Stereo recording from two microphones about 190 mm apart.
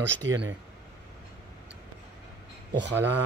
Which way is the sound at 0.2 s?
80° right.